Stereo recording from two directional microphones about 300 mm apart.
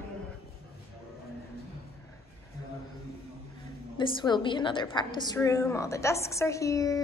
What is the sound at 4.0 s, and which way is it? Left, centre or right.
A woman's voice, centre.